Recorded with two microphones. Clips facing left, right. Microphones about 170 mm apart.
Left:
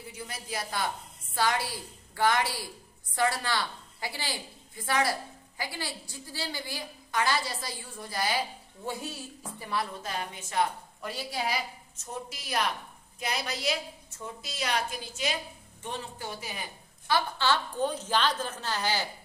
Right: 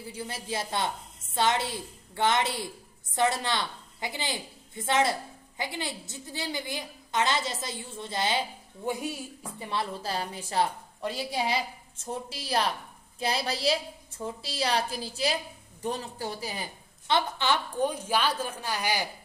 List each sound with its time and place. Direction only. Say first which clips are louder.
0.1 s a woman's voice: right 4 dB; 30° right (ahead or behind); by 9.7 s 15° right (ahead or behind)
9.7 s a woman's voice: right 2 dB; 30° right (ahead or behind)
17.1 s a woman's voice: right 1 dB; 15° right (ahead or behind)